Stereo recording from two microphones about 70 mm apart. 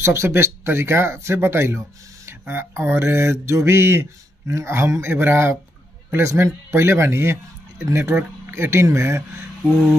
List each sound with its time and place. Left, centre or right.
0.0 s mantra: right